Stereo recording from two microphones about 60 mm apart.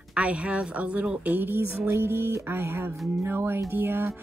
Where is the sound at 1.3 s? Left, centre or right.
Right.